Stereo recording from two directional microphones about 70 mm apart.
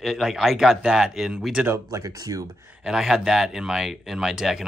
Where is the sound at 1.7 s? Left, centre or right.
Right.